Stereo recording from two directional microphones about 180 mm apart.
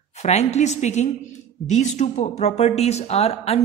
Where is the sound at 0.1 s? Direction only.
40° left (ahead or behind).